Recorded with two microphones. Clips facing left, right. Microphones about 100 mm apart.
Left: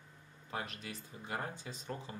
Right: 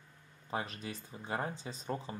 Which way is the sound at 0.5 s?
30° right (ahead or behind).